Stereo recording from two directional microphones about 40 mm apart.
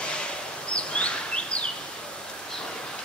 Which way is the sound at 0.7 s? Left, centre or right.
Left.